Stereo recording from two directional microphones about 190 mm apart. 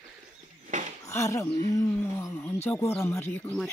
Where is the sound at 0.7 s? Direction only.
40° right (ahead or behind).